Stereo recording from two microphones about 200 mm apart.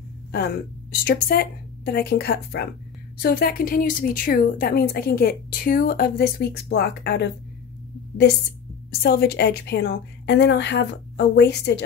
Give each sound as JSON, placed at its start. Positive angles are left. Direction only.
{"t": 1.0, "sound": "a woman's voice", "side_deg": 50}
{"t": 9.0, "sound": "a woman's voice", "side_deg": 50}